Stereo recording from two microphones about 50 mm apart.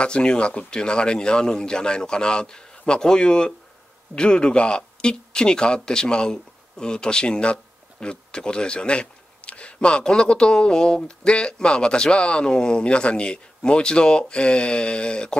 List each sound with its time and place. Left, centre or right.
0.0 s a man's voice: centre